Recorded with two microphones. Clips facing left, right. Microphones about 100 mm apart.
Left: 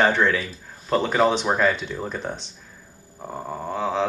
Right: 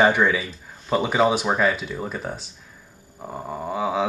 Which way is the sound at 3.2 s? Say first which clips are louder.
Even; centre (ahead or behind).